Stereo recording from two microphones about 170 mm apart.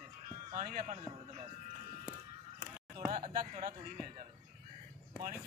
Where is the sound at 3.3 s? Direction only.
55° right (ahead or behind).